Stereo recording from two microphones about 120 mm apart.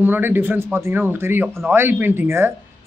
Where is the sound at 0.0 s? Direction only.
15° right (ahead or behind).